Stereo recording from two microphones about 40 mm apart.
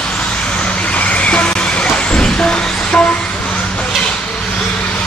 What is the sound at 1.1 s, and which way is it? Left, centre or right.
Vehicle, left.